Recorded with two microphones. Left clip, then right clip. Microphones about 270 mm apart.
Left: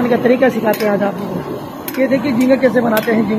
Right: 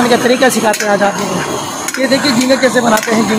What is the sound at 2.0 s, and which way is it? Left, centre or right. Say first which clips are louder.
Speech: right 3 dB; right.